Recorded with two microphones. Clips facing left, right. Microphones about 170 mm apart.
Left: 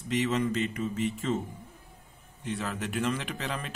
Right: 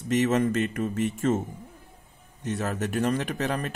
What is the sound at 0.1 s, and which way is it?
Speech, 45° right (ahead or behind).